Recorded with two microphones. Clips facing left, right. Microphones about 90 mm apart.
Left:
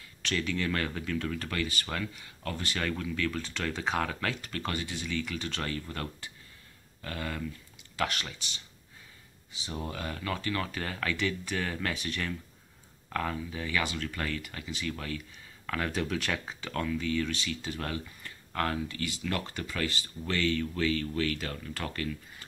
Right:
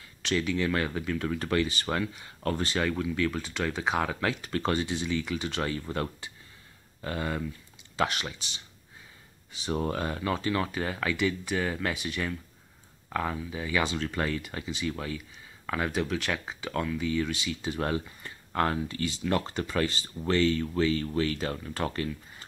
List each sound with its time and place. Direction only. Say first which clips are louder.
0.2 s speech: right 4 dB; 15° right (ahead or behind); by 2.8 s 30° right (ahead or behind)
2.8 s speech: right 2 dB; 15° right (ahead or behind)
4.5 s speech: right 7 dB; 25° right (ahead or behind)
9.5 s speech: right 8 dB; 55° right (ahead or behind)
9.9 s speech: right 5 dB; 25° right (ahead or behind)